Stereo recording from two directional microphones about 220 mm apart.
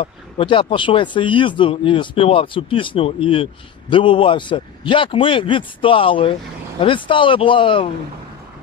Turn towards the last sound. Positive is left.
turn(degrees=20)  # may be behind; listen again after turning